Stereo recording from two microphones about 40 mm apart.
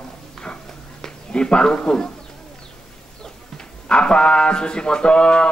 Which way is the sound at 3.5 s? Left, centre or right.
Left.